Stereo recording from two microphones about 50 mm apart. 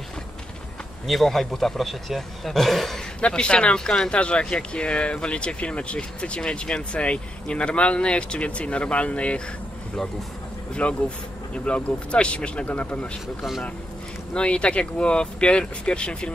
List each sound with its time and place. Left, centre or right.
1.0 s a man's voice: centre
3.2 s speech: left
10.7 s speech: left
13.4 s a man's voice: centre
14.3 s speech: left